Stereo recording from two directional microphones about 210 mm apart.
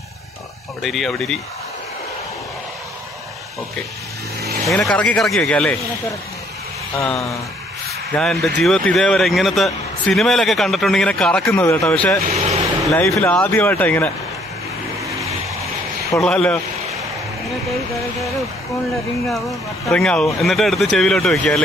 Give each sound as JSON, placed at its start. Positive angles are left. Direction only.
{"t": 0.8, "sound": "speech", "side_deg": 0}
{"t": 4.4, "sound": "vehicle", "side_deg": -50}
{"t": 4.6, "sound": "speech", "side_deg": 5}
{"t": 8.1, "sound": "speech", "side_deg": 0}
{"t": 15.0, "sound": "vehicle", "side_deg": -15}
{"t": 16.2, "sound": "speech", "side_deg": 5}
{"t": 17.6, "sound": "speech", "side_deg": 0}
{"t": 19.9, "sound": "speech", "side_deg": 5}